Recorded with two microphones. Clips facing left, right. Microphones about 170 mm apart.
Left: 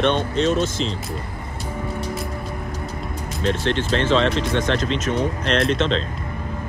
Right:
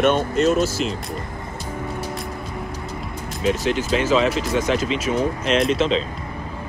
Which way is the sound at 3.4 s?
10° right (ahead or behind).